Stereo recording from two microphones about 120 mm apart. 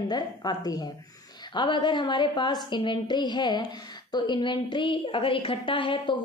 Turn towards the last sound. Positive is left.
turn(degrees=45)  # may be behind; listen again after turning